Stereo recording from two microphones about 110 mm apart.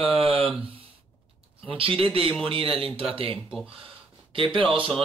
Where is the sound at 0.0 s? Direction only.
55° right (ahead or behind).